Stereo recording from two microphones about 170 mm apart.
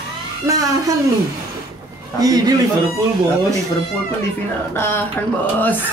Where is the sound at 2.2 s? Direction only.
20° right (ahead or behind).